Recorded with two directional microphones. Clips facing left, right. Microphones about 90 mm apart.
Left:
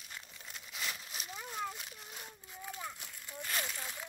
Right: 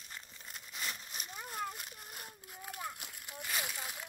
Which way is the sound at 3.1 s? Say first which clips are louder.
Left 1 dB; 10° right (ahead or behind).